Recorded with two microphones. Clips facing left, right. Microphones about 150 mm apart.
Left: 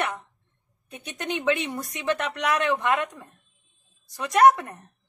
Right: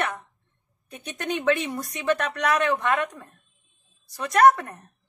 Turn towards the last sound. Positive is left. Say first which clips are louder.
# even
turn(degrees=20)  # may be behind; listen again after turning